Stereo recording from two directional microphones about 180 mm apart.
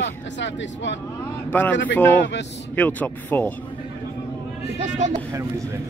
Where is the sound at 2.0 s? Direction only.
10° left (ahead or behind).